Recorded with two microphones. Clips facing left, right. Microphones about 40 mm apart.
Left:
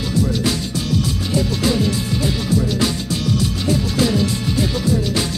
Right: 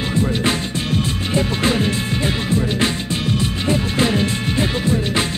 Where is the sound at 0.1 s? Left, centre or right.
Right.